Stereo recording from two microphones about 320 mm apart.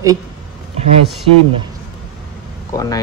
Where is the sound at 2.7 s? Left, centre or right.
Centre.